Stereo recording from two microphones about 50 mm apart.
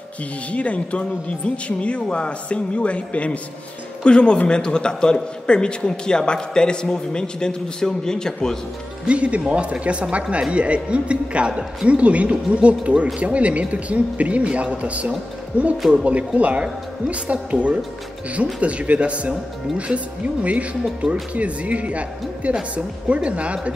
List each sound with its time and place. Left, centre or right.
0.5 s a man's voice: left
9.0 s a man's voice: right
21.0 s a man's voice: right